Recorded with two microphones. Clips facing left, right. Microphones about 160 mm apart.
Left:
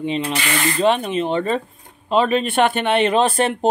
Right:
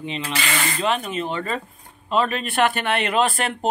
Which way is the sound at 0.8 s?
30° left (ahead or behind).